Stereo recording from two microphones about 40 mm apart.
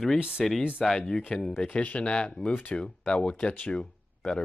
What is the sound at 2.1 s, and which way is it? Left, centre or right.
Speech, left.